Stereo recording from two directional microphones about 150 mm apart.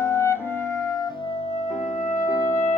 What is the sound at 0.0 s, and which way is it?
Music, 15° left (ahead or behind).